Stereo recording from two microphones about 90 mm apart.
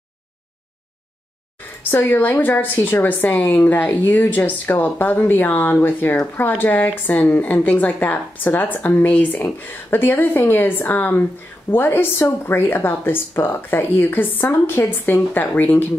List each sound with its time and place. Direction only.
1.8 s a woman's voice: 20° left (ahead or behind)